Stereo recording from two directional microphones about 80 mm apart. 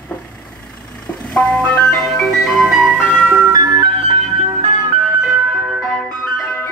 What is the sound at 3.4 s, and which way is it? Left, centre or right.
Ice cream truck, right.